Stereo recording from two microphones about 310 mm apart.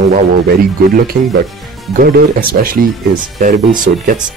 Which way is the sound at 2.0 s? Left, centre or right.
Right.